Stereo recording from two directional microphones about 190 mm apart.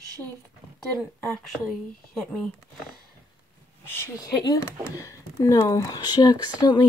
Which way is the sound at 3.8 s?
10° left (ahead or behind).